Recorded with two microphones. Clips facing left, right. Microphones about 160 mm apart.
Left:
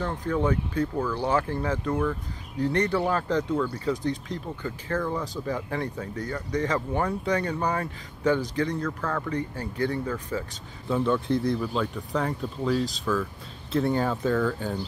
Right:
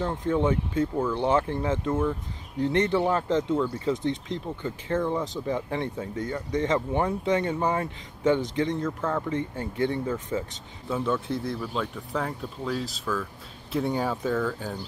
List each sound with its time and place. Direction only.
0.0 s speech: 25° right (ahead or behind)
10.9 s speech: 5° right (ahead or behind)
13.7 s speech: 10° right (ahead or behind)